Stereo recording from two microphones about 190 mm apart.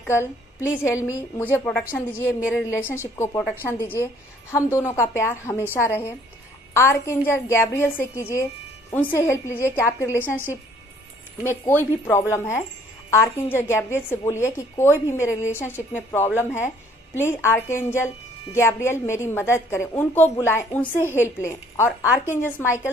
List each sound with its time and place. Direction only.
0.0 s a woman's voice: 15° left (ahead or behind)
2.2 s a woman's voice: 5° right (ahead or behind)
2.7 s a woman's voice: 15° left (ahead or behind)
11.4 s a woman's voice: 10° left (ahead or behind)